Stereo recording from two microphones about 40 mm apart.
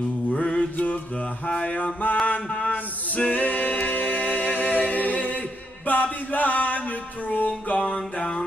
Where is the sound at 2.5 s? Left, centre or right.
Left.